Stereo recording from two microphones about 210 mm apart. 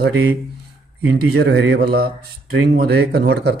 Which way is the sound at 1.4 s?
50° right (ahead or behind).